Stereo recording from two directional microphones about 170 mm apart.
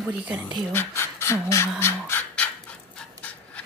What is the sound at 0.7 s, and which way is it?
Speech, 15° left (ahead or behind).